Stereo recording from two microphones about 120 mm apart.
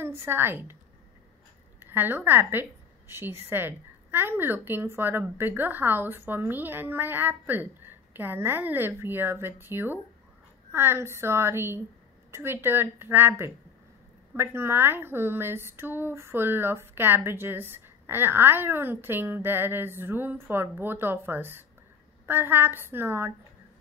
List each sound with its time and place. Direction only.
0.0 s speech: 20° right (ahead or behind)
1.8 s a woman's voice: 20° right (ahead or behind)